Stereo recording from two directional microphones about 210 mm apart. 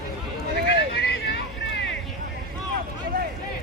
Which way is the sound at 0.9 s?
55° left (ahead or behind).